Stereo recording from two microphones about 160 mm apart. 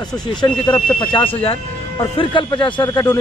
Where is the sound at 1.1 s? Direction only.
35° left (ahead or behind).